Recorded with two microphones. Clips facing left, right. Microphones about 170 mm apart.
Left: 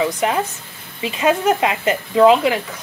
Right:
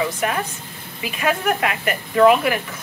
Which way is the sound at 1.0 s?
20° left (ahead or behind).